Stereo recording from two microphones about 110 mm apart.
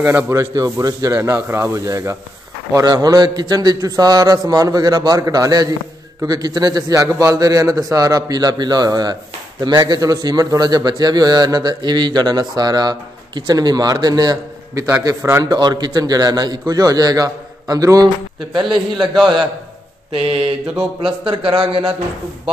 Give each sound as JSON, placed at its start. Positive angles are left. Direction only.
{"t": 0.0, "sound": "speech", "side_deg": -20}
{"t": 0.6, "sound": "a man's voice", "side_deg": -30}
{"t": 15.4, "sound": "a man's voice", "side_deg": -40}
{"t": 20.1, "sound": "mantra", "side_deg": -60}
{"t": 21.3, "sound": "a man's voice", "side_deg": -50}